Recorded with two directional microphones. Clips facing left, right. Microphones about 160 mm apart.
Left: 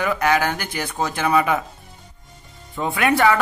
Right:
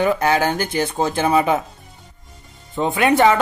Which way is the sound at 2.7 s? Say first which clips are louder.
Right 3 dB; 20° right (ahead or behind).